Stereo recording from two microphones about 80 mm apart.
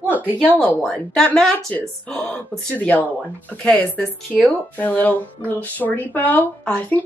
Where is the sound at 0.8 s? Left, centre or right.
Centre.